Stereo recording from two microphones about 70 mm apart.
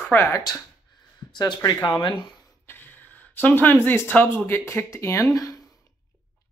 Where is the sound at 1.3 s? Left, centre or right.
Left.